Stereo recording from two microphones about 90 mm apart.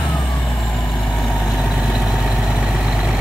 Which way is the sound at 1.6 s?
5° right (ahead or behind).